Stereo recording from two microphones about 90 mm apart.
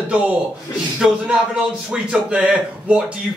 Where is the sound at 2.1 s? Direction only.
10° right (ahead or behind).